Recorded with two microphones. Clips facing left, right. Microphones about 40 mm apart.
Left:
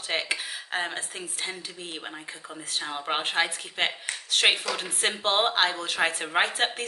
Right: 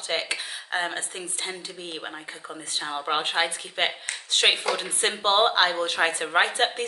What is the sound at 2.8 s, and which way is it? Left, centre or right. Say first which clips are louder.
A woman's voice: right 3 dB; centre.